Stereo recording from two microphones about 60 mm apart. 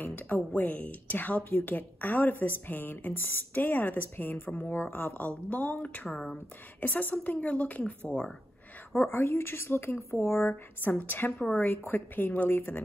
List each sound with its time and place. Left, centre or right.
0.0 s a woman's voice: left
8.9 s a woman's voice: left
10.5 s a woman's voice: left